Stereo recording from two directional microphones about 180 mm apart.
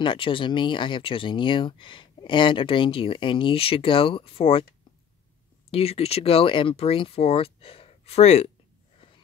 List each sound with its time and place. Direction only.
0.0 s speech: 30° left (ahead or behind)
5.7 s speech: 35° left (ahead or behind)